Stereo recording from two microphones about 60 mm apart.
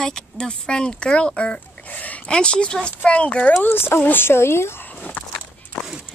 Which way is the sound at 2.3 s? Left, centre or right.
Centre.